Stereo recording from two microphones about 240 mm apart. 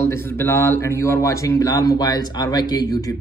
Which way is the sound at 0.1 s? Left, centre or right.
Centre.